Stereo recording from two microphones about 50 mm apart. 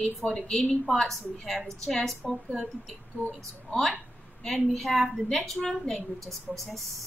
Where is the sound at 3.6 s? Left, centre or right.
Centre.